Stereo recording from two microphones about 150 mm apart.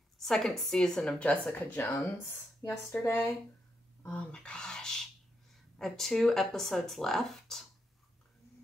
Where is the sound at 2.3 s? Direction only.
15° left (ahead or behind); by 7.6 s centre (ahead or behind).